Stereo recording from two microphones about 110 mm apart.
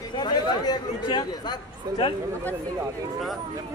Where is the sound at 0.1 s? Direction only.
40° left (ahead or behind).